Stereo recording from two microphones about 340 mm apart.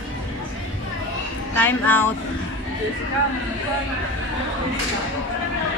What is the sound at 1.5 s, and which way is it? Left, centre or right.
Child singing, centre.